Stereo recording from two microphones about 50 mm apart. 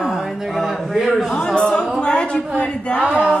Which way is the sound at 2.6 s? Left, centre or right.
Left.